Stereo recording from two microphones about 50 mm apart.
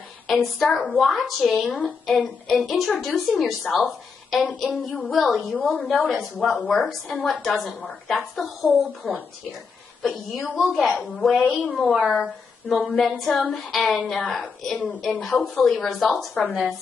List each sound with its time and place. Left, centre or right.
0.3 s a woman's voice: centre
14.2 s a woman's voice: centre
14.6 s a woman's voice: centre